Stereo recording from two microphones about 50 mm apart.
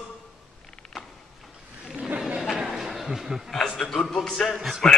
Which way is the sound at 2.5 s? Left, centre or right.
Centre.